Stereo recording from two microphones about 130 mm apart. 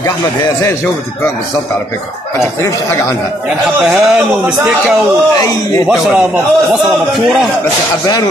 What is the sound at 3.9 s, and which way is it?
Speech, 5° right (ahead or behind).